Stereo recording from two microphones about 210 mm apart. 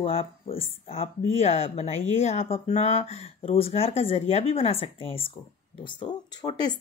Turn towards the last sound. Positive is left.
turn(degrees=20)  # may be behind; listen again after turning